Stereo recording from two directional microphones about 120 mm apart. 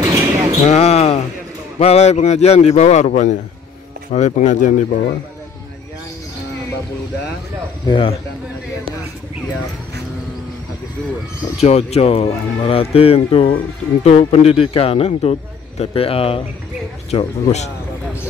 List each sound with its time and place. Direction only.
0.0 s basketball bounce: 35° right (ahead or behind)
0.7 s a man's voice: 60° left (ahead or behind); by 4.8 s 90° left
7.8 s speech: 45° left (ahead or behind)
11.6 s speech: 60° left (ahead or behind)
17.1 s speech: 65° left (ahead or behind)